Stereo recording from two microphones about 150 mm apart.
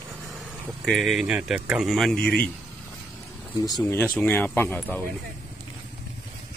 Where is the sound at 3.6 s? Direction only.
25° left (ahead or behind).